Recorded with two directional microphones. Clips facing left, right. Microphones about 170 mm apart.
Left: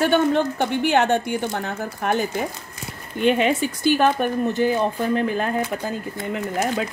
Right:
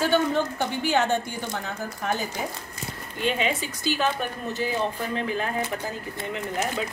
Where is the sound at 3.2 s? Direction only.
55° left (ahead or behind).